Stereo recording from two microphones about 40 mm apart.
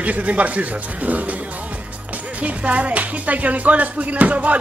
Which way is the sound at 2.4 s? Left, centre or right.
Right.